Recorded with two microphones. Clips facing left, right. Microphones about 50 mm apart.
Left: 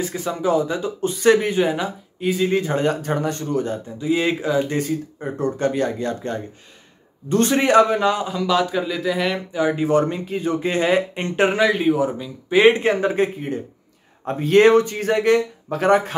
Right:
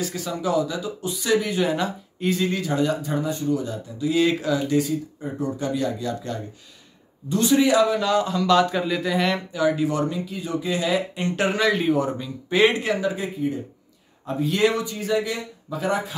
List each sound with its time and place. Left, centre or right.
0.0 s speech: left
1.6 s speech: left
2.5 s speech: left
4.0 s speech: left
4.6 s speech: left
8.0 s speech: centre
9.5 s speech: left
11.5 s speech: centre
12.8 s speech: left